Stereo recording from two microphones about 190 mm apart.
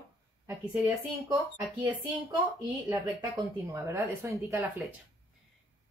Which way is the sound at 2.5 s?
15° right (ahead or behind).